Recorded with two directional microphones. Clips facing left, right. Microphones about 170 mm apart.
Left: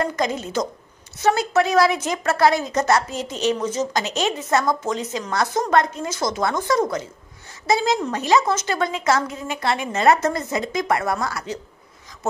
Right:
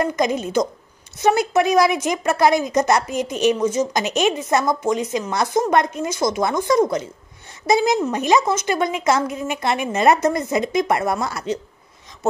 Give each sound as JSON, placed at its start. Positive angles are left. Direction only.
{"t": 0.0, "sound": "a woman's voice", "side_deg": -15}